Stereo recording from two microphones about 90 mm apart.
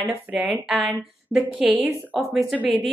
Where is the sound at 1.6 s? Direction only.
15° right (ahead or behind).